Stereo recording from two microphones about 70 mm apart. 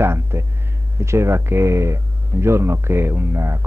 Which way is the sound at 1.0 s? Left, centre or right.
Right.